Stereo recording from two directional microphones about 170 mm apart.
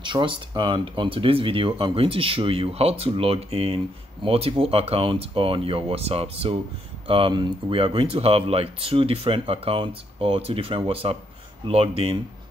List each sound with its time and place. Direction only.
0.0 s speech: 30° right (ahead or behind)